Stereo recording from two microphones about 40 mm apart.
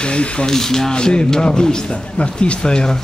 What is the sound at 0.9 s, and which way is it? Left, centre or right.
Speech, centre.